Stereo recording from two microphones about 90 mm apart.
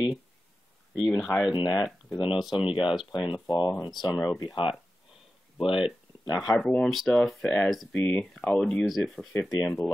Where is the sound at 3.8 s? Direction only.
55° left (ahead or behind).